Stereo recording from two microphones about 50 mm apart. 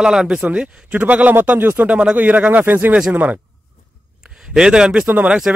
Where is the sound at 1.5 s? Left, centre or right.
Right.